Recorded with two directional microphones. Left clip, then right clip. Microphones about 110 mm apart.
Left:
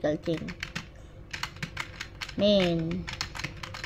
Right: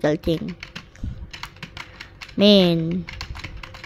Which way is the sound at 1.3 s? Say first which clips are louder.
Left 1 dB; 40° left (ahead or behind).